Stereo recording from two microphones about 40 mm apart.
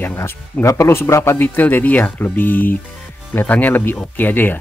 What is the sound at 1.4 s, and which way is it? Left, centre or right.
Speech, left.